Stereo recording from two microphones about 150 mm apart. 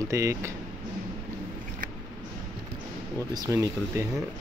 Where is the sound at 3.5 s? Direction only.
20° right (ahead or behind).